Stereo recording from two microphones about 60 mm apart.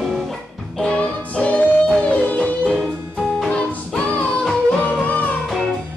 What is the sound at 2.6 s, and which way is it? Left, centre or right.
Music, centre.